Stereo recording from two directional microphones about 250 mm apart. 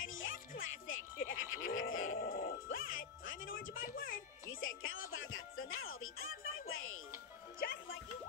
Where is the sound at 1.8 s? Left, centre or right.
Left.